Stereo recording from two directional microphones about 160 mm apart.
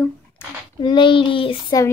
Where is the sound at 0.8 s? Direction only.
30° left (ahead or behind).